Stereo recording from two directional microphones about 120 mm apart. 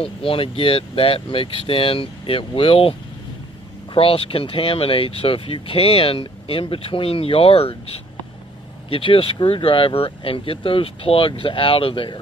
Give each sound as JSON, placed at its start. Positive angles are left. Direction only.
{"t": 0.0, "sound": "speech", "side_deg": 50}
{"t": 8.9, "sound": "speech", "side_deg": 50}